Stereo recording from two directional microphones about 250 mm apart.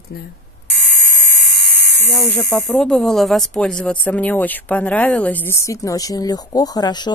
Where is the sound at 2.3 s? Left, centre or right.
Centre.